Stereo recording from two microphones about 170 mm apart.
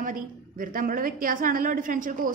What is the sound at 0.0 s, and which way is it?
A woman's voice, 55° right (ahead or behind).